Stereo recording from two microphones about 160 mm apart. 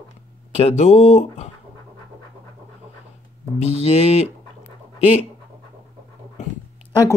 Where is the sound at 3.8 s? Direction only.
40° left (ahead or behind).